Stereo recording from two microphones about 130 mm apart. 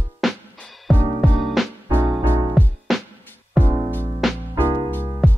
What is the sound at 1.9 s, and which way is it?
Music, 15° right (ahead or behind).